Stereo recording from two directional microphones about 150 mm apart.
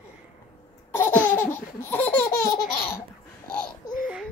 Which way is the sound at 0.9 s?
15° left (ahead or behind).